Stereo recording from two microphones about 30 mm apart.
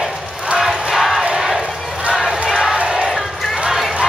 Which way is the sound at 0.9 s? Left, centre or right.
Centre.